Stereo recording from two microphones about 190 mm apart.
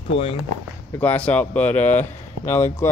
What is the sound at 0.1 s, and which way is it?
Speech, 30° left (ahead or behind).